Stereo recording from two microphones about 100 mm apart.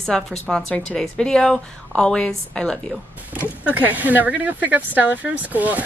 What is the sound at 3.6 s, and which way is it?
Speech, 15° right (ahead or behind).